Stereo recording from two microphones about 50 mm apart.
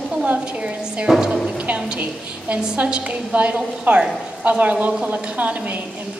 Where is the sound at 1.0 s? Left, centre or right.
Centre.